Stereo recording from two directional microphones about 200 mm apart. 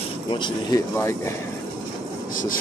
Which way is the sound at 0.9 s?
15° left (ahead or behind).